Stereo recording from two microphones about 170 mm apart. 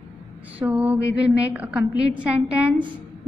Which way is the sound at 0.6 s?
10° right (ahead or behind).